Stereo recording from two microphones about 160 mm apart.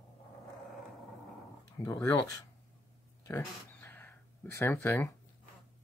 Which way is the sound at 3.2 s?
15° left (ahead or behind).